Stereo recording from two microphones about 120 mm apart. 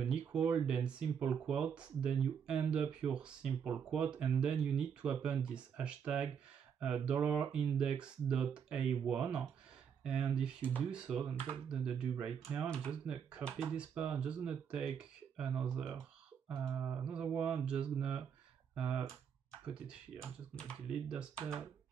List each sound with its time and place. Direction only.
0.0 s speech: 10° right (ahead or behind)
12.4 s speech: 20° right (ahead or behind)
13.0 s speech: 10° right (ahead or behind)
20.2 s speech: 5° left (ahead or behind)